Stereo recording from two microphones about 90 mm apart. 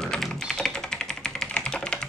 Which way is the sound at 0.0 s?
5° left (ahead or behind).